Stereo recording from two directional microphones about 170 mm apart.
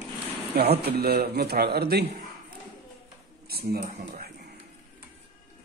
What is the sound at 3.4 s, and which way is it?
Speech, 65° right (ahead or behind).